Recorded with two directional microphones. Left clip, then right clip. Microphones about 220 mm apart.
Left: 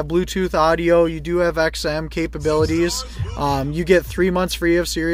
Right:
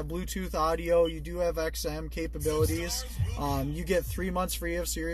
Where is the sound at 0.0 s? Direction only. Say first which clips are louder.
Left 16 dB; 25° left (ahead or behind).